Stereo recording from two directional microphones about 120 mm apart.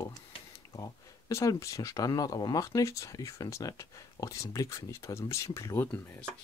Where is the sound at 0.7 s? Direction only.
30° left (ahead or behind).